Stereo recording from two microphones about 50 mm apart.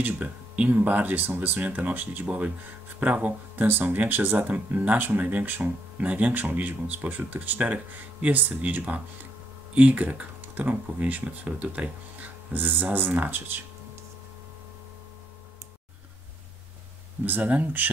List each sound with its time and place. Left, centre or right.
0.7 s speech: right
3.6 s speech: right
17.2 s speech: right